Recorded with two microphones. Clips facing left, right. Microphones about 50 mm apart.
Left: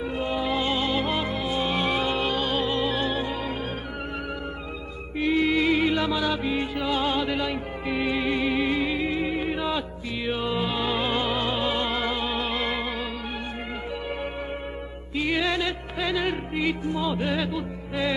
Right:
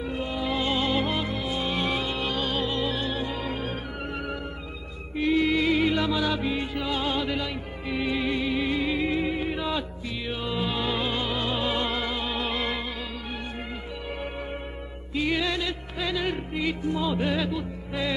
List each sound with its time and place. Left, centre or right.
0.0 s music: centre
1.1 s music: centre
2.0 s music: left
2.3 s music: centre
5.1 s music: centre
8.9 s music: centre
10.2 s music: left
11.1 s music: left
15.1 s music: centre
16.9 s music: centre